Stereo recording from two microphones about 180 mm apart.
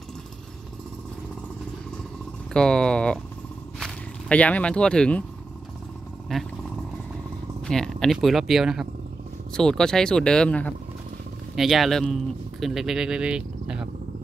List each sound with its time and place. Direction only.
2.5 s speech: 5° left (ahead or behind)
6.3 s speech: 5° left (ahead or behind)
7.6 s speech: 5° left (ahead or behind)